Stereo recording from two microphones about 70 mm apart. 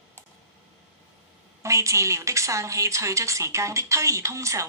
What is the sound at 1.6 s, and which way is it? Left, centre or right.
A woman's voice, right.